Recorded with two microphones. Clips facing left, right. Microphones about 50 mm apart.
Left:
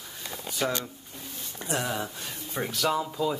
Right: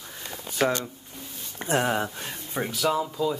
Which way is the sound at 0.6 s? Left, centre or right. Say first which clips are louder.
Right 5 dB; right.